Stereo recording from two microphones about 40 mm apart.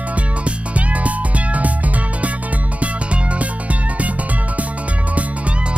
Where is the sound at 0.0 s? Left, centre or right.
Right.